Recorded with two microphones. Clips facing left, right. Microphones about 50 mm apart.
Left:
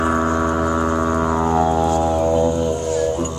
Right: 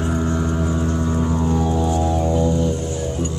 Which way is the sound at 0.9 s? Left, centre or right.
Left.